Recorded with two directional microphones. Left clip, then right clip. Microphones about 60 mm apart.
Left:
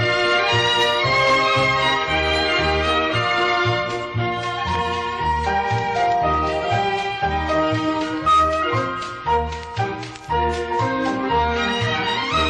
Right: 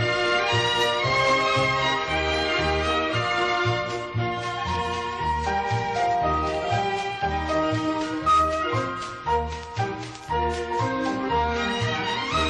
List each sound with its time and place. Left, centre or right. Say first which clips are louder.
0.0 s music: left 5 dB; left
5.2 s music: left 5 dB; left
8.3 s music: left 4 dB; left